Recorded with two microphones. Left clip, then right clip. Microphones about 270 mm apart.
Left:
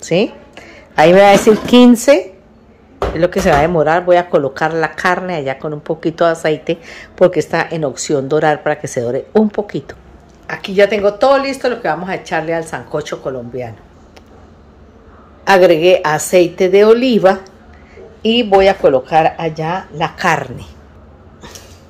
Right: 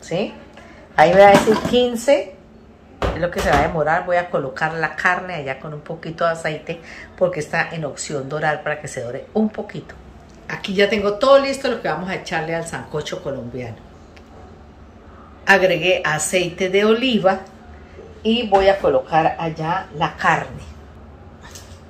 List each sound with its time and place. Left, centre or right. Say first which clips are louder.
0.0 s speech: left 9 dB; left
3.2 s speech: left 6 dB; left
10.4 s a woman's voice: left 6 dB; centre
15.4 s speech: left 6 dB; left
18.2 s speech: left 5 dB; left